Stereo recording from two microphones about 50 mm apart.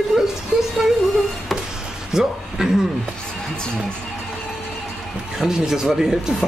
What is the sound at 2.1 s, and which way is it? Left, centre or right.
Speech, centre.